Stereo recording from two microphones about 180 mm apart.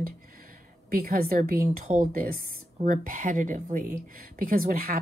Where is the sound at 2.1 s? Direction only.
55° right (ahead or behind).